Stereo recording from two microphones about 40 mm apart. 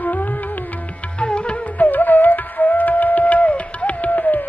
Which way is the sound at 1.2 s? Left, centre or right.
Left.